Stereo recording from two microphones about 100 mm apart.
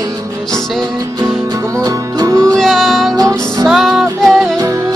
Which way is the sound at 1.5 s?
35° right (ahead or behind).